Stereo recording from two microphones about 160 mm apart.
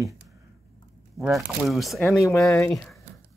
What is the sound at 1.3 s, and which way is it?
Speech, centre (ahead or behind).